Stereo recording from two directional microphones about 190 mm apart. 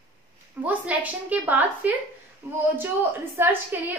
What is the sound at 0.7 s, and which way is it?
A woman's voice, 10° right (ahead or behind).